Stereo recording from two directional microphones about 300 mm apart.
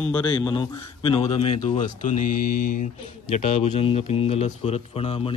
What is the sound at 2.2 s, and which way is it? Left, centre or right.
Mantra, left.